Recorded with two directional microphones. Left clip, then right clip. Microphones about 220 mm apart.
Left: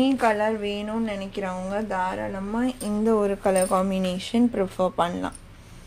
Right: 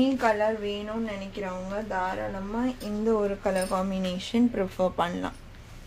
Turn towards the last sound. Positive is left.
turn(degrees=20)  # may be behind; listen again after turning